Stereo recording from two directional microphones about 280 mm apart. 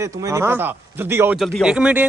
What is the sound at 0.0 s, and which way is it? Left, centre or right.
A man's voice, centre.